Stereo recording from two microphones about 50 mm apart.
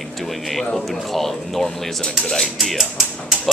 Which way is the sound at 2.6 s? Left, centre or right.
Centre.